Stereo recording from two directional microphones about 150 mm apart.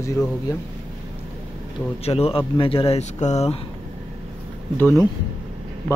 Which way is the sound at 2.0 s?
40° left (ahead or behind).